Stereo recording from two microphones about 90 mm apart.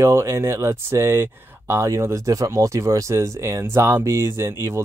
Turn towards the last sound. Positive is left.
turn(degrees=-30)  # may be behind; listen again after turning